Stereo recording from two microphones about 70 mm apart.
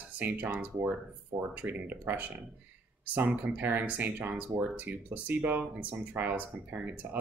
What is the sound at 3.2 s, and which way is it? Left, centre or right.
Speech, right.